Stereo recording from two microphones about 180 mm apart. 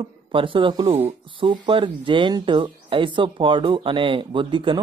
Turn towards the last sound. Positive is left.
turn(degrees=-25)  # may be behind; listen again after turning